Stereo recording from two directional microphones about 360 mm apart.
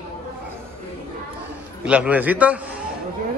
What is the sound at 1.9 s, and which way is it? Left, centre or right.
Speech, centre.